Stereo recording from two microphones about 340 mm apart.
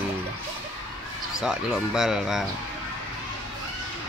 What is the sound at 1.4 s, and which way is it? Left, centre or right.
Speech, centre.